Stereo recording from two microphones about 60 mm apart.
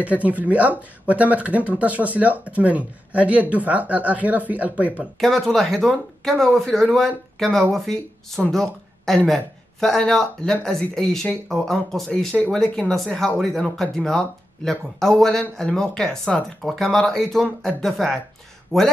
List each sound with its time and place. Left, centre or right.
0.0 s speech: right
5.2 s speech: centre